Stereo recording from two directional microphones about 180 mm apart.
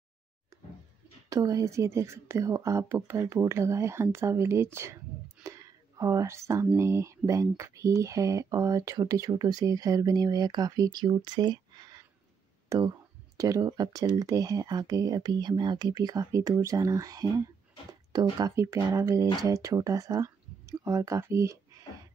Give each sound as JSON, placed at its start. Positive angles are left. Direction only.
{"t": 1.3, "sound": "a woman's voice", "side_deg": -20}
{"t": 5.4, "sound": "whispering", "side_deg": -20}
{"t": 6.8, "sound": "a woman's voice", "side_deg": -15}